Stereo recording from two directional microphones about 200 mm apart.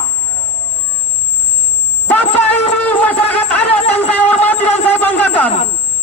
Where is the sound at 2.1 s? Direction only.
10° left (ahead or behind).